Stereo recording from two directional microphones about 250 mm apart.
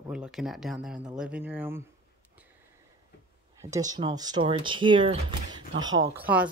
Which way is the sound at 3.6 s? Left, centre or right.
Centre.